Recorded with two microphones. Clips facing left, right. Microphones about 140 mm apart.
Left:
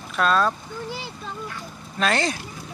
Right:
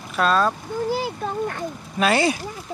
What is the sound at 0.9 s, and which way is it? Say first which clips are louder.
Speech: right 9 dB; 50° right (ahead or behind).